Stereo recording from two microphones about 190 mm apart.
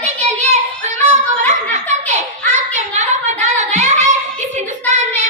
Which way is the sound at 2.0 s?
35° right (ahead or behind).